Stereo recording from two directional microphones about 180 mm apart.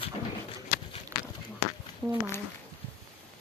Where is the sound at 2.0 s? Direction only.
Centre (ahead or behind).